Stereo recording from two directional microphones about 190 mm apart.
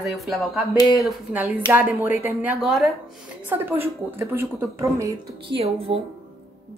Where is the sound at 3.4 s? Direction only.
10° right (ahead or behind).